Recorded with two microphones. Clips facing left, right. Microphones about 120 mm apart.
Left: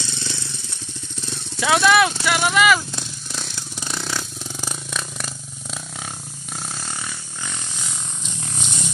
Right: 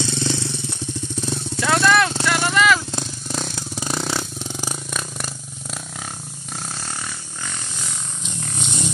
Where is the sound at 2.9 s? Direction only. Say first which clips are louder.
Right 6 dB; 40° right (ahead or behind).